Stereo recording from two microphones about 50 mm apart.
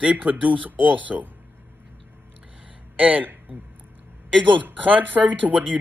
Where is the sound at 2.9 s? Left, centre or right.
Right.